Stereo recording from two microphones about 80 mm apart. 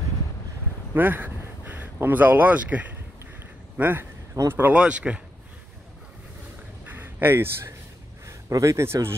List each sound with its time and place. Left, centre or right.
0.9 s speech: right
4.7 s speech: centre
6.9 s a sound: right
8.3 s speech: right